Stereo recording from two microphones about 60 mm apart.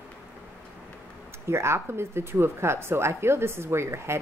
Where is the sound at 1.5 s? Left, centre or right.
Right.